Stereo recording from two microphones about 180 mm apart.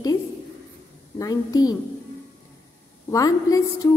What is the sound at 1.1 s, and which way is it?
Music, 20° left (ahead or behind).